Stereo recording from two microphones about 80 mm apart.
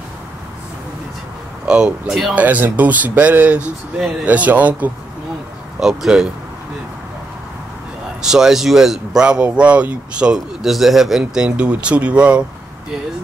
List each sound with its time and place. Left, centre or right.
1.7 s speech: centre
2.3 s speech: centre
5.8 s speech: centre
8.3 s speech: centre